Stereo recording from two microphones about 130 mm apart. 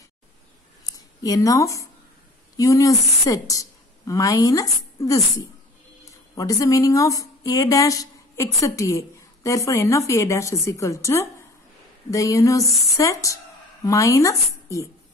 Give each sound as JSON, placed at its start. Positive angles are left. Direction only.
{"t": 0.8, "sound": "a woman's voice", "side_deg": 30}